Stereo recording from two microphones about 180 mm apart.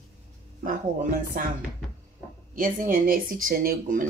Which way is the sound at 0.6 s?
50° right (ahead or behind).